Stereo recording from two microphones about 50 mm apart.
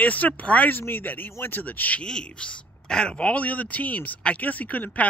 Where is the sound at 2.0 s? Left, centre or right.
Centre.